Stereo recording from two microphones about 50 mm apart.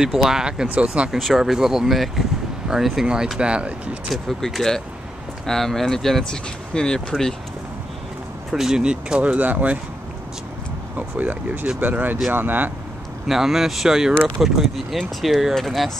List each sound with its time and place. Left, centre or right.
0.0 s speech: centre
1.1 s speech: centre
3.3 s speech: right
4.1 s speech: centre
8.5 s speech: centre
9.2 s speech: right
11.0 s speech: right
13.3 s speech: centre